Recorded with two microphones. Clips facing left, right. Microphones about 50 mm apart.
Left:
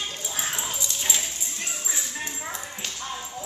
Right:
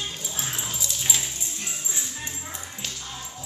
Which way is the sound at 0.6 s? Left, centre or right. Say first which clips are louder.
Left 1 dB; centre.